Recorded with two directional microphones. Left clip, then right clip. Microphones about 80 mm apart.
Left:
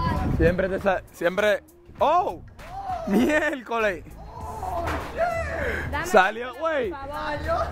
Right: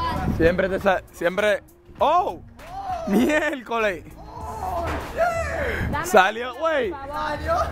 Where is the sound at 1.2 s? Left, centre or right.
Centre.